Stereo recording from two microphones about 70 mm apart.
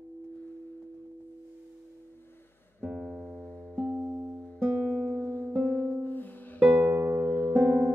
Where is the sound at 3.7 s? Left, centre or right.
Right.